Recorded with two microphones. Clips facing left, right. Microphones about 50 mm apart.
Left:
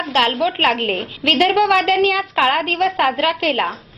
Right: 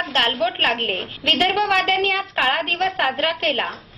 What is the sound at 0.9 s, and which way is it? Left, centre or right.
Speech, left.